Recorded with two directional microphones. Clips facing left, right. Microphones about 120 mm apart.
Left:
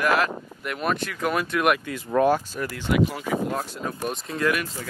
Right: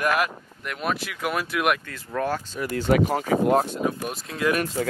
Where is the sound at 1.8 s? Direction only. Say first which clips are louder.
Left 7 dB; 15° left (ahead or behind).